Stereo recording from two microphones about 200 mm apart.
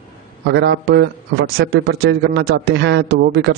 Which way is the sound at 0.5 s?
60° right (ahead or behind).